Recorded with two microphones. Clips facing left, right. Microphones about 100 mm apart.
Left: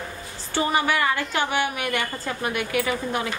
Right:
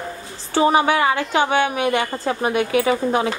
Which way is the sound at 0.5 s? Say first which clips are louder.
Right 6 dB; 25° right (ahead or behind).